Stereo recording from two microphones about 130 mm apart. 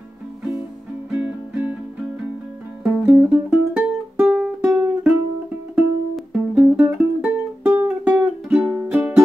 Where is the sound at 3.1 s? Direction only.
15° right (ahead or behind).